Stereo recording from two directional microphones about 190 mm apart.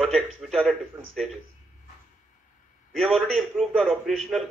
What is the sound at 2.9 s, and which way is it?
Speech, centre (ahead or behind).